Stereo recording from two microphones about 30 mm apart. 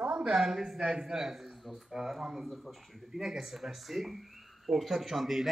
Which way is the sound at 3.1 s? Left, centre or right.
Centre.